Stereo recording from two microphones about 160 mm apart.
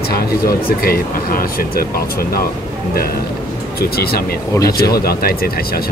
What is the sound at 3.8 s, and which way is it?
Speech, 75° left (ahead or behind).